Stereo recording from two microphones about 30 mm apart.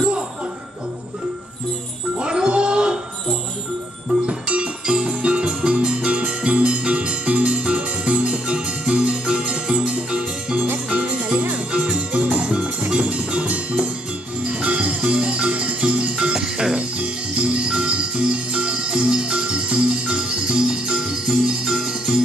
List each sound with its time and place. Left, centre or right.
2.1 s music: right
4.3 s music: right
10.5 s music: right
11.5 s music: right
14.8 s music: right
16.3 s music: centre
16.7 s jingle bell: right
21.0 s jingle bell: centre
21.7 s music: centre